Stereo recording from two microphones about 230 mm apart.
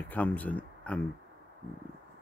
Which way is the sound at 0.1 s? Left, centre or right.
Centre.